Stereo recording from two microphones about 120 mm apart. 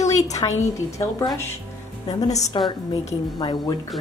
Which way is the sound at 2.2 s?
70° left (ahead or behind).